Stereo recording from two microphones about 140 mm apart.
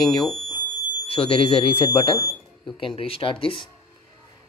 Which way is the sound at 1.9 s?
25° left (ahead or behind).